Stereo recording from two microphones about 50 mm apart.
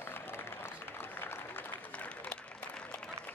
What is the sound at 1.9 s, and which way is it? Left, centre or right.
Applause, left.